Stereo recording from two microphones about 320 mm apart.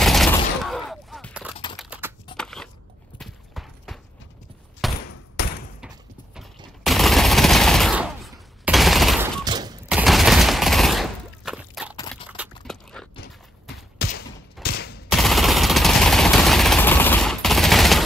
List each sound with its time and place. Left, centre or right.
0.0 s fusillade: centre
1.8 s typing: centre
2.3 s a sound: centre
5.4 s slam: left
6.3 s fusillade: centre
9.4 s fusillade: centre
9.8 s fusillade: centre
12.6 s a sound: centre
13.9 s fusillade: left
15.0 s machine gun: centre